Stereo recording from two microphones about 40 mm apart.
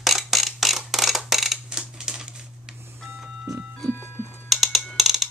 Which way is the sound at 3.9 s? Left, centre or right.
Left.